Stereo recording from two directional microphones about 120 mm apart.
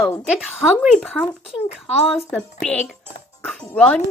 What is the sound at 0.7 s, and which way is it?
A woman's voice, 5° left (ahead or behind).